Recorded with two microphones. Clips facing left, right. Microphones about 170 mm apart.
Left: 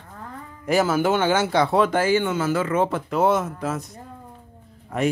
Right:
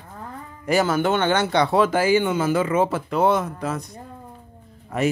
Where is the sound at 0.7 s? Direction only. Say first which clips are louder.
Even; centre (ahead or behind).